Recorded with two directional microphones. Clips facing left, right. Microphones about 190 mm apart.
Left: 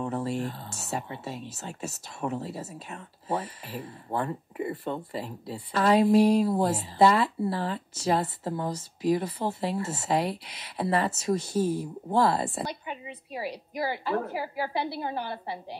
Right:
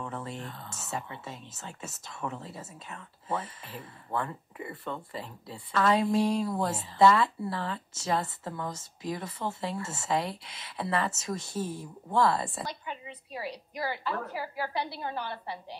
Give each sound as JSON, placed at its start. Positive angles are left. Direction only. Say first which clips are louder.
{"t": 0.0, "sound": "speech", "louder": "left 8 dB", "side_deg": 35}
{"t": 12.8, "sound": "a sound", "louder": "left 3 dB", "side_deg": 10}
{"t": 13.7, "sound": "a woman's voice", "louder": "left 5 dB", "side_deg": 25}